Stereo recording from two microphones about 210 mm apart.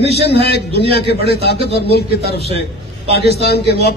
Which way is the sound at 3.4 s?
50° left (ahead or behind).